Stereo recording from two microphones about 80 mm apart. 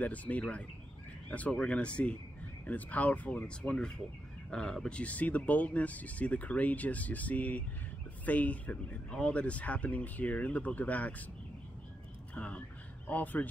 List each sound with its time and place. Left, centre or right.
0.0 s speech: centre
12.4 s speech: centre